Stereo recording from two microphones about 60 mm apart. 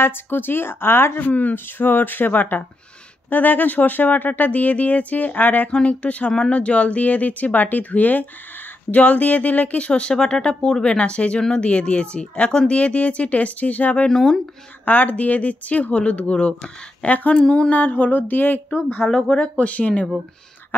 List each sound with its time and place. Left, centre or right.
0.0 s speech: left
14.0 s speech: centre
14.9 s speech: left
17.7 s speech: left
19.0 s speech: centre
19.6 s speech: left